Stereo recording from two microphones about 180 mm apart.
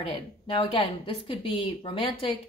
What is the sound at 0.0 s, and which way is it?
Speech, 30° left (ahead or behind).